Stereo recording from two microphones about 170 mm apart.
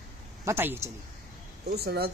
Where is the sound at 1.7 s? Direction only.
70° right (ahead or behind).